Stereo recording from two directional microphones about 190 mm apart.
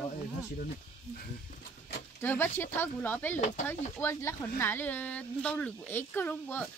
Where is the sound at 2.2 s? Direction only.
10° left (ahead or behind).